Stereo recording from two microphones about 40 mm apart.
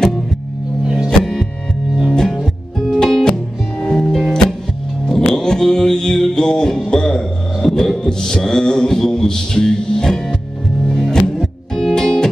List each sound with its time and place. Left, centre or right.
0.8 s music: centre
1.2 s music: centre